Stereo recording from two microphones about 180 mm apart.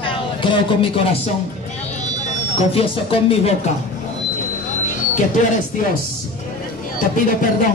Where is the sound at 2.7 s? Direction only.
30° left (ahead or behind).